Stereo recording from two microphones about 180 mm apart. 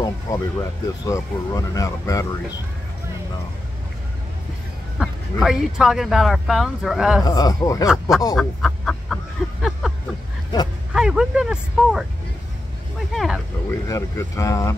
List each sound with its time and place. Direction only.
0.0 s speech: 20° left (ahead or behind)
4.9 s speech: centre (ahead or behind)
7.2 s speech: 20° left (ahead or behind)
8.4 s a sound: centre (ahead or behind)
10.9 s speech: 5° right (ahead or behind)
13.1 s speech: centre (ahead or behind)
13.8 s speech: 20° left (ahead or behind)